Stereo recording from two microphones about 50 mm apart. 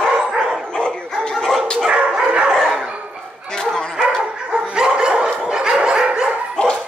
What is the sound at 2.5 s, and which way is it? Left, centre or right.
Dog, centre.